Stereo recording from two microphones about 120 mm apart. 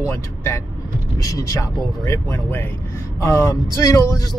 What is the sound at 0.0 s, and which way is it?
Speech, 20° left (ahead or behind).